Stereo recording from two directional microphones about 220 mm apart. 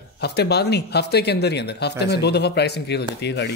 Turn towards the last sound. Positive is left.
turn(degrees=50)  # may be behind; listen again after turning